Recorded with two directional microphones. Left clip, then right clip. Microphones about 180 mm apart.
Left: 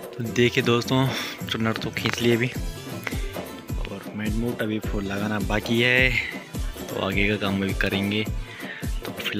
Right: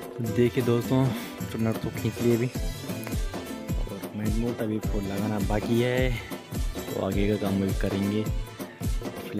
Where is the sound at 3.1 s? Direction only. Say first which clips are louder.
Left 10 dB; 15° right (ahead or behind).